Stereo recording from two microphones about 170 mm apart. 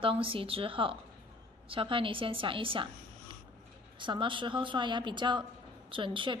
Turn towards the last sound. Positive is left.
turn(degrees=-30)  # may be behind; listen again after turning